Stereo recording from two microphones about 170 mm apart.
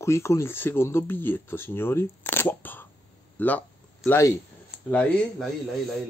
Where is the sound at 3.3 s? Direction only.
10° left (ahead or behind).